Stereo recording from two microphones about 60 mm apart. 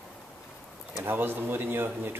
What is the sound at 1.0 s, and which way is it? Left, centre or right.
Speech, right.